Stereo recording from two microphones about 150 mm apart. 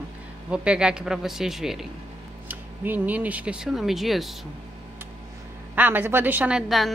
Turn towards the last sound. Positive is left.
turn(degrees=-5)  # may be behind; listen again after turning